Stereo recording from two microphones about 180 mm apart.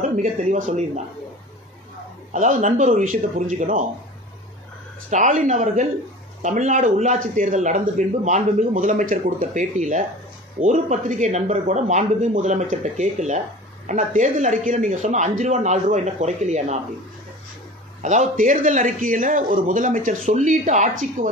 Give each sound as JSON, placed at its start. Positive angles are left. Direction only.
{"t": 0.2, "sound": "speech", "side_deg": -40}
{"t": 2.3, "sound": "speech", "side_deg": -45}
{"t": 5.1, "sound": "speech", "side_deg": -40}
{"t": 18.0, "sound": "speech", "side_deg": -40}